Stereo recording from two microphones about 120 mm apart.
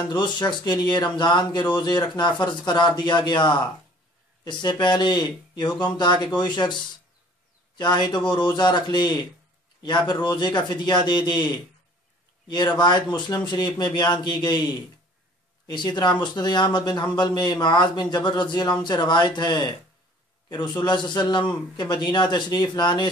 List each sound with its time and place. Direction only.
0.0 s speech: 40° left (ahead or behind)